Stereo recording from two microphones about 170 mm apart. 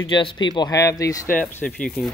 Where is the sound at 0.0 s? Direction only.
30° left (ahead or behind).